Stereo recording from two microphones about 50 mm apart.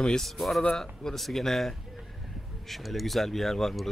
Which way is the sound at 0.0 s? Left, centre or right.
Centre.